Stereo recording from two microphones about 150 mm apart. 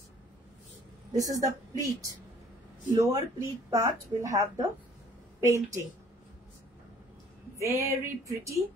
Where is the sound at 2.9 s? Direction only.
20° right (ahead or behind).